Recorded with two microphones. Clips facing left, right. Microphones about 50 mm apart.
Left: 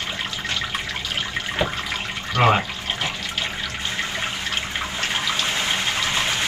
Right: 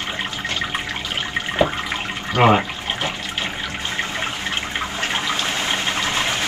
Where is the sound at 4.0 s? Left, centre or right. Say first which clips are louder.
Right 2 dB; right.